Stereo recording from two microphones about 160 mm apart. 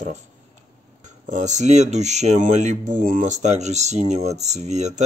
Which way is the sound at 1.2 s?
50° right (ahead or behind).